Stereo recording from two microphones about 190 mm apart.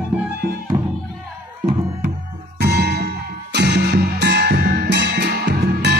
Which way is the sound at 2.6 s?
60° right (ahead or behind).